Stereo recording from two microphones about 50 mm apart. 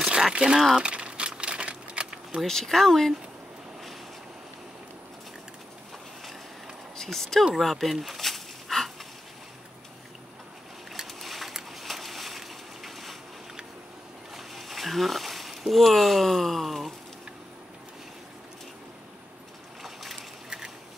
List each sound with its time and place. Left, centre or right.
0.0 s speech: centre
0.8 s crumpling: right
2.4 s speech: centre
7.0 s speech: centre
7.5 s a sound: centre
10.9 s boat: centre
14.3 s a sound: centre
19.8 s boat: centre
20.4 s a sound: centre